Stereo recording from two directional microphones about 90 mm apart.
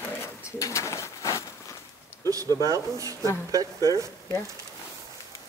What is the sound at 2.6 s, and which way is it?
Speech, 40° right (ahead or behind).